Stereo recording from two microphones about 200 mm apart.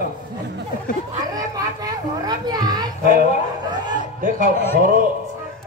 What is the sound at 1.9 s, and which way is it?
A child's voice, 20° right (ahead or behind).